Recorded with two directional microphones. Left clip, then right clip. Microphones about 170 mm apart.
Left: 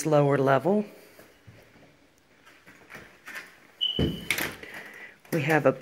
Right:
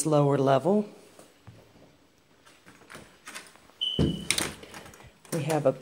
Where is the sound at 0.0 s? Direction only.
5° right (ahead or behind).